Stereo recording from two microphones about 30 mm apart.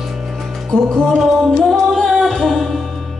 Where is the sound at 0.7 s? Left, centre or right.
Left.